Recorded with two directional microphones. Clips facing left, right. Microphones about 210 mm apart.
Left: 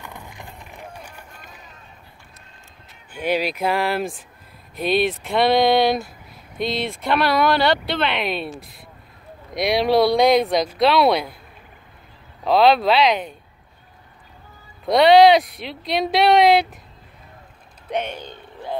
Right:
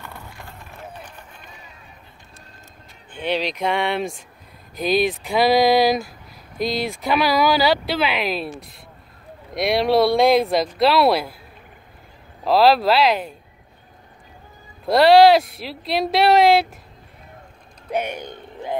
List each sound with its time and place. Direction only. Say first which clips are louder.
0.0 s run: left 1 dB; 15° left (ahead or behind)
3.1 s speech: left 2 dB; 10° left (ahead or behind)
12.4 s speech: even; centre (ahead or behind)
14.9 s speech: even; centre (ahead or behind)
17.9 s speech: right 1 dB; 10° right (ahead or behind)